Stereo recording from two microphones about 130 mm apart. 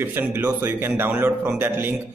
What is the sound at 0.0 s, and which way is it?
A man's voice, 15° right (ahead or behind).